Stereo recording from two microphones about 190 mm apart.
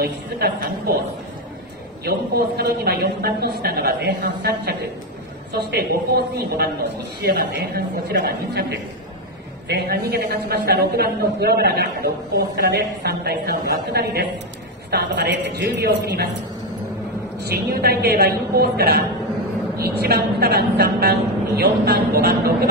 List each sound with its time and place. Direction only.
0.0 s a woman's voice: 55° right (ahead or behind)
2.0 s a man's voice: 55° right (ahead or behind)
17.5 s a woman's voice: 55° right (ahead or behind)